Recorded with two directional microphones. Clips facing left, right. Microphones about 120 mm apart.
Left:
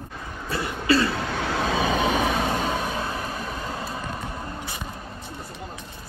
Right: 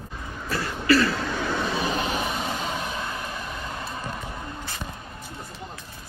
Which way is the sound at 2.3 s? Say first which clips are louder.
Left 5 dB; 55° left (ahead or behind).